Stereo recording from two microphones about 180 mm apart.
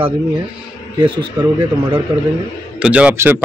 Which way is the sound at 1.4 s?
15° right (ahead or behind).